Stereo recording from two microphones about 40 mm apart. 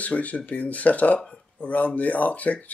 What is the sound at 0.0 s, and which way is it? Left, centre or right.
Speech, left.